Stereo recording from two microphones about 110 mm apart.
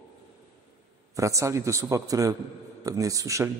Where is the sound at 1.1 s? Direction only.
30° right (ahead or behind).